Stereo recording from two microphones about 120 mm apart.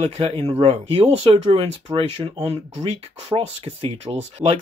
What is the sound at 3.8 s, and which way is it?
Speech, 50° right (ahead or behind).